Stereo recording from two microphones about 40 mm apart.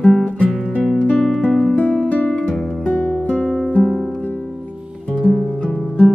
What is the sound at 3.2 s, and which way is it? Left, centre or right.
Music, left.